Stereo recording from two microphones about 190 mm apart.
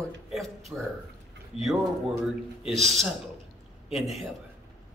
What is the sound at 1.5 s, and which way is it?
Speech, 30° left (ahead or behind).